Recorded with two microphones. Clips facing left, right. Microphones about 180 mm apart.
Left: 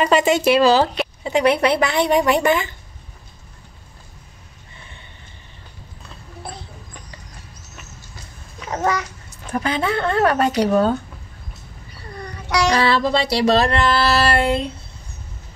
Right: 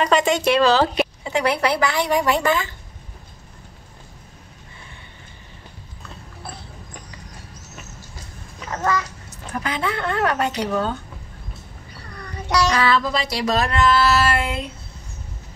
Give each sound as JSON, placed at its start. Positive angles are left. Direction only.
{"t": 0.0, "sound": "speech", "side_deg": 5}
{"t": 1.2, "sound": "speech", "side_deg": 20}
{"t": 8.6, "sound": "a child's voice", "side_deg": 15}
{"t": 9.5, "sound": "speech", "side_deg": 30}
{"t": 12.7, "sound": "speech", "side_deg": 30}